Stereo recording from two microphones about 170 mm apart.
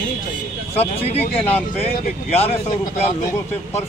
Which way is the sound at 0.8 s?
35° left (ahead or behind).